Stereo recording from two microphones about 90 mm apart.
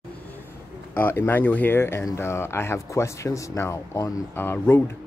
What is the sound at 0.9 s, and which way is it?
Speech, 25° left (ahead or behind).